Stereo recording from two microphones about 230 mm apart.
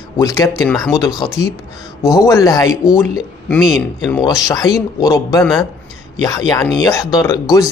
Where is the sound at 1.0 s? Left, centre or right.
Centre.